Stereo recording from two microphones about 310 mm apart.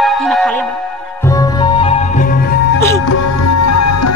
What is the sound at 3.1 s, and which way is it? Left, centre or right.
Music, left.